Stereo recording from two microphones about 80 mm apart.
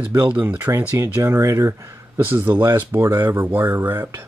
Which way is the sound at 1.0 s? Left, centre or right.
Right.